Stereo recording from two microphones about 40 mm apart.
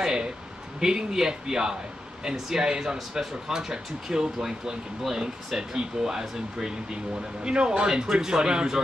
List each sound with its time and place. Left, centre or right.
0.0 s speech: centre